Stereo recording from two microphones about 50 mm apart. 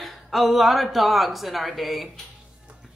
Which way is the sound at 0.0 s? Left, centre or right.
Centre.